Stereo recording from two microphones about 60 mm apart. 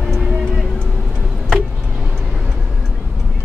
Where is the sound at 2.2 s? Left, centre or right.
Centre.